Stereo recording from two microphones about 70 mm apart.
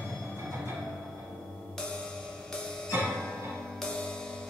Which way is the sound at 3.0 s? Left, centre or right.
Centre.